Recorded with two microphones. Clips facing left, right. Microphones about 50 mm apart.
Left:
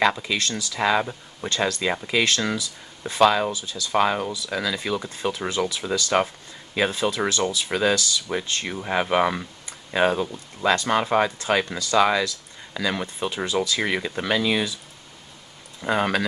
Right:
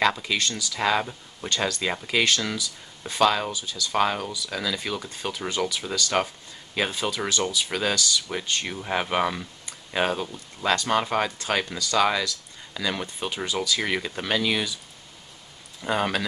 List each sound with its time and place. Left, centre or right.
0.0 s speech: centre
2.3 s speech: left
15.8 s speech: centre